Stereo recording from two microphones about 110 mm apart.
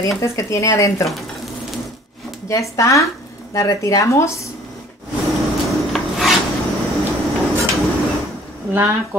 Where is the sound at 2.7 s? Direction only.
30° left (ahead or behind).